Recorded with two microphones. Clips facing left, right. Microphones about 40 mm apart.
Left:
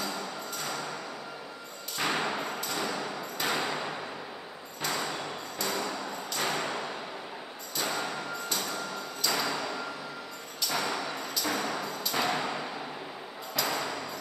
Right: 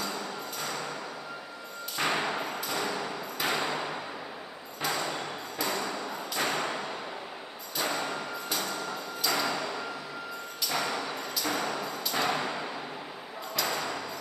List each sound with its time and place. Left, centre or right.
0.0 s music: centre
2.0 s hammer: centre
4.8 s a sound: centre